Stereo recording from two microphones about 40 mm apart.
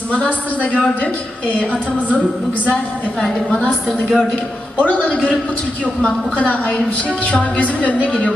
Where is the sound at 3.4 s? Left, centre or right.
Left.